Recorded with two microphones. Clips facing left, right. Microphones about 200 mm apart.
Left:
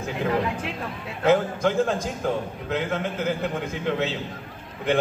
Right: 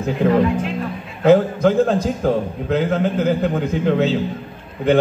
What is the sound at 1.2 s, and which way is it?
A man's voice, 30° right (ahead or behind).